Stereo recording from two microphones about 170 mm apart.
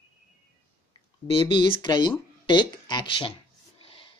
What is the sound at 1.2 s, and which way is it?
Speech, 30° left (ahead or behind).